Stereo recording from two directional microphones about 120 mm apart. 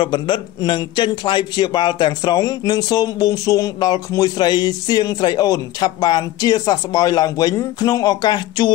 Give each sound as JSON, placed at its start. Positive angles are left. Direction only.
{"t": 0.0, "sound": "a man's voice", "side_deg": 40}